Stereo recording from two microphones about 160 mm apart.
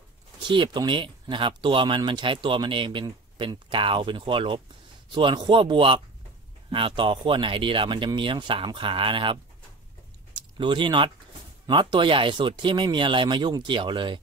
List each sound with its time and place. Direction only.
0.4 s speech: 30° right (ahead or behind)